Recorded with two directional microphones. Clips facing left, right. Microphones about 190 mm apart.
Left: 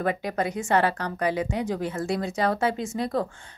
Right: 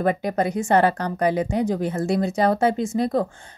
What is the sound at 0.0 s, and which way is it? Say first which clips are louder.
Speech: right 5 dB; 40° right (ahead or behind).